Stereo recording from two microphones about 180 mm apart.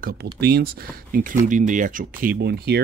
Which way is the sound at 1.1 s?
45° right (ahead or behind).